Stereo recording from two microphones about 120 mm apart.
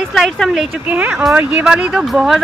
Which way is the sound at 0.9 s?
15° right (ahead or behind).